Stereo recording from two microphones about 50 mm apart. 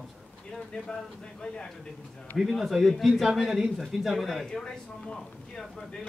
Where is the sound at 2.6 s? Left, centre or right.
Centre.